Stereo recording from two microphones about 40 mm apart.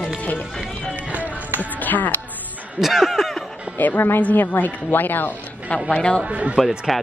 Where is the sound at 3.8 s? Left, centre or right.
Left.